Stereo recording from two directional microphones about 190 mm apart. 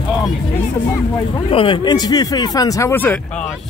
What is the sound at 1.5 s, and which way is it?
Speech, 25° left (ahead or behind).